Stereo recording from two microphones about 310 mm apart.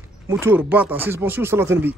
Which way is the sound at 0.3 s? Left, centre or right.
Centre.